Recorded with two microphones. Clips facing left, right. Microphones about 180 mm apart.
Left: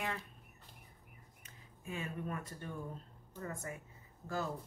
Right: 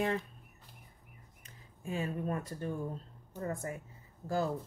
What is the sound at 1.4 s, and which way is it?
A woman's voice, 35° right (ahead or behind).